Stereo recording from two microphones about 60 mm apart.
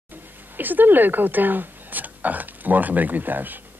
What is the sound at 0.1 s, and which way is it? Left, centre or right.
Speech, right.